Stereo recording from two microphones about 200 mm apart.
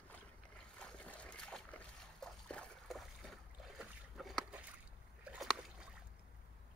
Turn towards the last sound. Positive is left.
turn(degrees=0)  # may be behind; listen again after turning